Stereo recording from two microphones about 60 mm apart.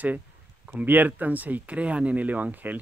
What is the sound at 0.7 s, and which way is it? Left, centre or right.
Speech, right.